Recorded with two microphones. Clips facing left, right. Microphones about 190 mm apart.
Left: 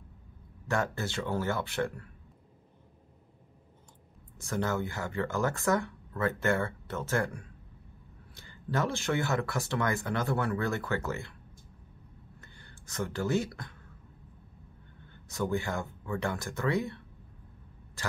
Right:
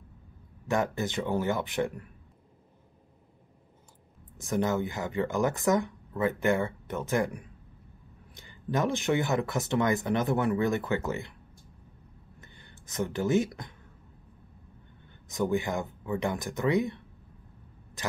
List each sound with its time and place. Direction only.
0.7 s speech: 15° right (ahead or behind)
4.4 s speech: 20° right (ahead or behind)
12.4 s a sound: 20° right (ahead or behind)
15.2 s speech: 15° right (ahead or behind)